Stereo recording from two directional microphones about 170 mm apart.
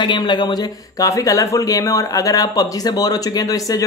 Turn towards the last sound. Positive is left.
turn(degrees=20)  # may be behind; listen again after turning